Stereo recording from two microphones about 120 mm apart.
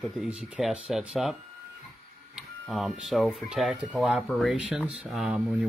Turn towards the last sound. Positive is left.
turn(degrees=-5)  # may be behind; listen again after turning